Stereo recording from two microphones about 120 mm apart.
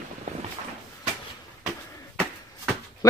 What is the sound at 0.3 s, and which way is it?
Boat, 75° right (ahead or behind).